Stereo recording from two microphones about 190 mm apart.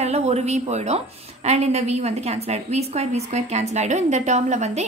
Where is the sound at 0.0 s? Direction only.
35° right (ahead or behind).